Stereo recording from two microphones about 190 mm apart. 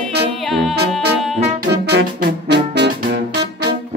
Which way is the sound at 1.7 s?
60° right (ahead or behind).